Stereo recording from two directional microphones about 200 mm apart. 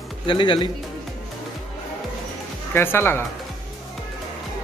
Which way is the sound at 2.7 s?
10° left (ahead or behind).